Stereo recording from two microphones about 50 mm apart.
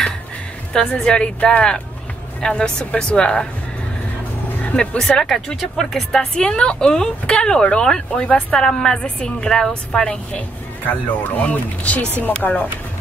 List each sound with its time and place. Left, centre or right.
0.7 s a woman's voice: centre
4.5 s music: left
4.7 s a woman's voice: centre
8.3 s a woman's voice: left
8.5 s a woman's voice: centre
10.9 s speech: left